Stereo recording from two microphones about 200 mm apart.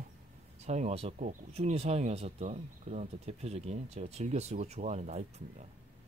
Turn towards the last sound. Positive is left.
turn(degrees=-35)  # may be behind; listen again after turning